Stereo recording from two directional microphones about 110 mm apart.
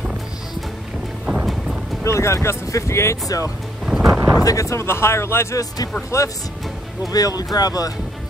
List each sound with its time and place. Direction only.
1.2 s music: 5° right (ahead or behind)
2.0 s speech: 25° left (ahead or behind)
4.0 s a sound: 25° right (ahead or behind)
4.4 s speech: 30° left (ahead or behind)